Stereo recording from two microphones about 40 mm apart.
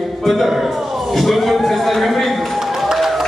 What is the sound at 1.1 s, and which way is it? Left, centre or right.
Run, centre.